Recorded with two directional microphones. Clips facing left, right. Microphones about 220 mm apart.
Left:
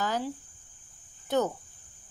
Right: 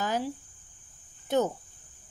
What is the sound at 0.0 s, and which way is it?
Speech, 20° right (ahead or behind).